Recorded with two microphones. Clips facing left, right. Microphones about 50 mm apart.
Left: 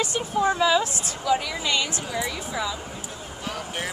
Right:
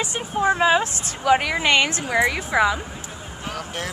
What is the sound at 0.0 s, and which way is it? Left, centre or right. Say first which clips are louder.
A woman's voice: right 1 dB; right.